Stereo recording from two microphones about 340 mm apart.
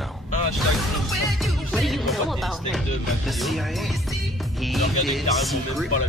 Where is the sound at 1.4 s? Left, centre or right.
Centre.